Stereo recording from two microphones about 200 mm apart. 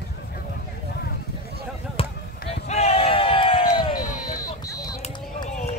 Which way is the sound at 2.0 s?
30° left (ahead or behind).